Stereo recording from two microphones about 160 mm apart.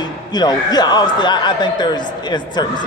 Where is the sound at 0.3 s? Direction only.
25° left (ahead or behind).